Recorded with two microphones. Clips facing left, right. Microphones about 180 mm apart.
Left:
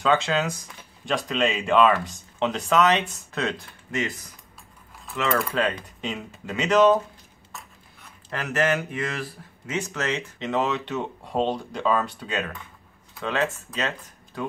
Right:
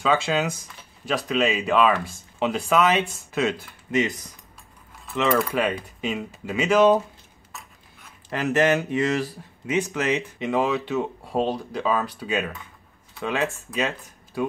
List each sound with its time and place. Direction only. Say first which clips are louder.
0.0 s speech: even; 5° right (ahead or behind)
5.5 s speech: right 1 dB; 10° right (ahead or behind)
8.3 s speech: right 4 dB; 20° right (ahead or behind)